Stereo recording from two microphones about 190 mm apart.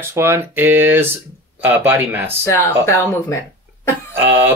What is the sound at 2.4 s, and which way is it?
Speech, 15° left (ahead or behind).